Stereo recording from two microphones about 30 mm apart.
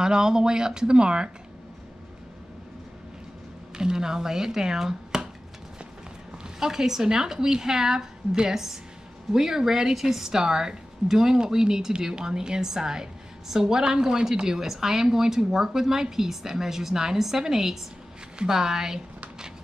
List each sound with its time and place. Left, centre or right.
0.0 s a woman's voice: right
3.7 s speech: right
6.6 s a woman's voice: centre
14.4 s speech: centre